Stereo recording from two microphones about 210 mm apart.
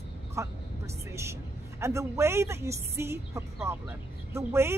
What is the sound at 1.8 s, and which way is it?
A woman's voice, 15° right (ahead or behind).